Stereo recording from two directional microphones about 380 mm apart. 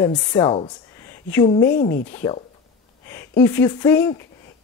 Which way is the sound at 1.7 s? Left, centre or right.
Left.